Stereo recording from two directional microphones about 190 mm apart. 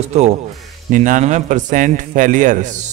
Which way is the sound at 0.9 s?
40° right (ahead or behind).